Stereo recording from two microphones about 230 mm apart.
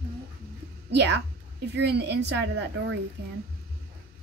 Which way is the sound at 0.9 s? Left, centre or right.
Right.